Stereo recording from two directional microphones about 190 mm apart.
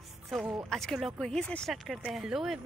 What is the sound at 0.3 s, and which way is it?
Speech, centre (ahead or behind).